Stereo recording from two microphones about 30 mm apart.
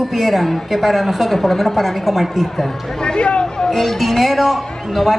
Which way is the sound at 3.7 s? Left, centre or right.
Centre.